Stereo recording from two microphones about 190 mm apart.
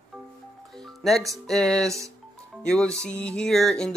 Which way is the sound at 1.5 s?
5° left (ahead or behind).